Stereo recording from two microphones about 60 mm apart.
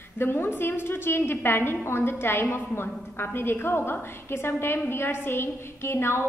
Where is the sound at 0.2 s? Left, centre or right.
Left.